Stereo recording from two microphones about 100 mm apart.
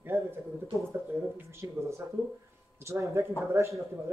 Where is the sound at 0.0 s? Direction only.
20° right (ahead or behind).